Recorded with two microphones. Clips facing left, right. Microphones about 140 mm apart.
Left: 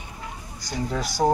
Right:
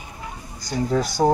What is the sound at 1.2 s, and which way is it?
Speech, 20° right (ahead or behind).